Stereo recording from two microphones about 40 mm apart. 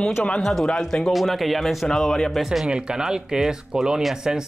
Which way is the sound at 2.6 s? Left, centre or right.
Right.